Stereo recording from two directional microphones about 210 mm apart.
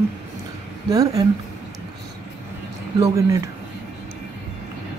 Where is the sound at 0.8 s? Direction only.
15° right (ahead or behind).